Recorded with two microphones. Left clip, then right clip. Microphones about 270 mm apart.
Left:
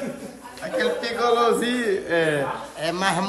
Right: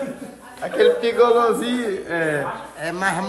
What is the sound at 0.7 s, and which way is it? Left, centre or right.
Speech, centre.